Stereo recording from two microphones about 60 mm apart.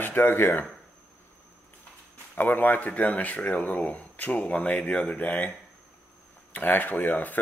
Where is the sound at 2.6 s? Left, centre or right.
Left.